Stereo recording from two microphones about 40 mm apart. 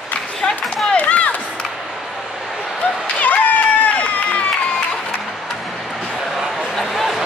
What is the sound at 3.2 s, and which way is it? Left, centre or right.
Run, left.